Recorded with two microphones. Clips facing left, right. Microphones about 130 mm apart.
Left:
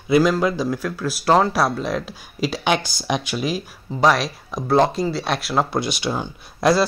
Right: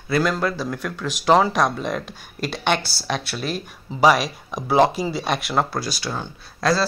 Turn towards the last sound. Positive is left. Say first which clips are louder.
# left 3 dB
turn(degrees=20)  # may be behind; listen again after turning